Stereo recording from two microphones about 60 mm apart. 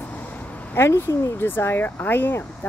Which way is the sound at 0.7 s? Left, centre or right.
Left.